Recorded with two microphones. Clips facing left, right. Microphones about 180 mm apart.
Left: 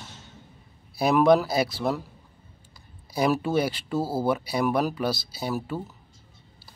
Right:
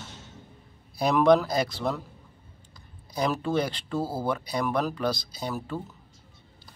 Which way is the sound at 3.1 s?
10° left (ahead or behind).